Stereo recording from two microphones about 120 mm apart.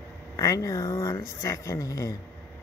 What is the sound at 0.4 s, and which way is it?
Speech, 30° left (ahead or behind).